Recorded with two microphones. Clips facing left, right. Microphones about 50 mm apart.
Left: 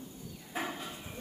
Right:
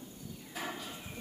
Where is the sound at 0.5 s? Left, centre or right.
Left.